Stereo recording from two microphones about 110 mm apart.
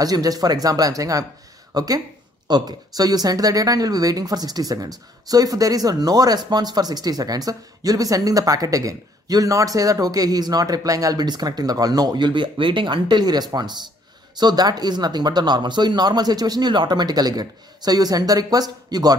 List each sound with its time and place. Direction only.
0.0 s speech: 35° right (ahead or behind)